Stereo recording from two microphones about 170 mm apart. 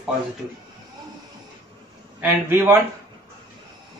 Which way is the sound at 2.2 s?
15° right (ahead or behind).